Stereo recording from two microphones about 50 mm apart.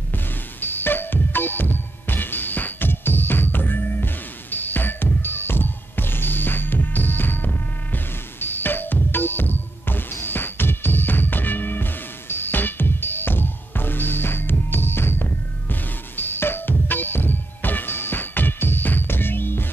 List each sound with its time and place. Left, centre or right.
0.1 s music: left